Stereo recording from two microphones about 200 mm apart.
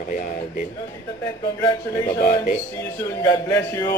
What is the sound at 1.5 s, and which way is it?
A man's voice, 15° left (ahead or behind).